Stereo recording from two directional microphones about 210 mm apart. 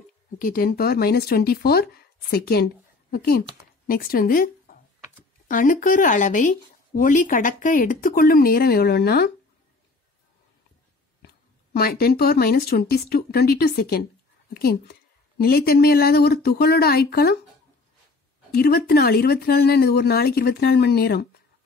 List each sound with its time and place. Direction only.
0.4 s speech: 45° left (ahead or behind)
11.2 s speech: 50° left (ahead or behind)
18.5 s speech: 50° left (ahead or behind)